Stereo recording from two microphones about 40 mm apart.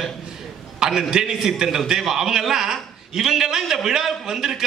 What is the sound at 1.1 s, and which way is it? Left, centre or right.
A man's voice, centre.